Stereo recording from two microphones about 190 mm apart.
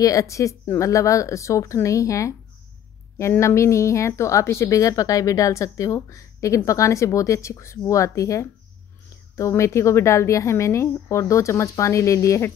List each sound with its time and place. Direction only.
0.0 s a woman's voice: 15° left (ahead or behind)